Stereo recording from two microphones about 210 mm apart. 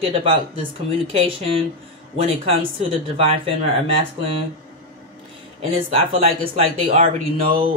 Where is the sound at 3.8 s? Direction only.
25° right (ahead or behind).